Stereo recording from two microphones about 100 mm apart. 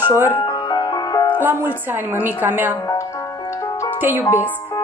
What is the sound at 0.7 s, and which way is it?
Music, 45° left (ahead or behind).